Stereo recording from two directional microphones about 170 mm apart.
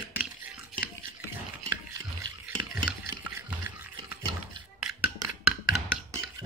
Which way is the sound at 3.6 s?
15° right (ahead or behind).